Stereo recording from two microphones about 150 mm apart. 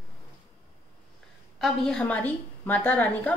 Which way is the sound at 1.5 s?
5° left (ahead or behind).